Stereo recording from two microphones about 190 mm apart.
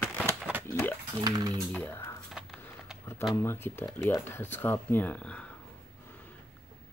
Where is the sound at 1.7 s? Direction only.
10° left (ahead or behind).